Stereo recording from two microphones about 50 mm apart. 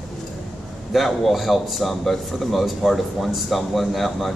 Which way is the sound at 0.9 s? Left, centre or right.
Centre.